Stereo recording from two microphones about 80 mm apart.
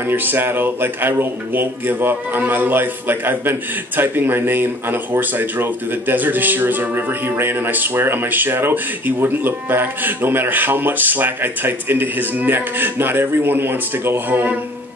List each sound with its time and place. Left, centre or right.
0.0 s speech: right